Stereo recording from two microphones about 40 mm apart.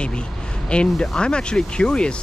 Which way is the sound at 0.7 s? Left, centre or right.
Left.